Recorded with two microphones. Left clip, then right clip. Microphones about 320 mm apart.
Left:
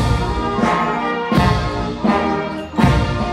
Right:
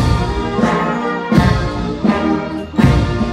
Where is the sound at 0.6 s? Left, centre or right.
Centre.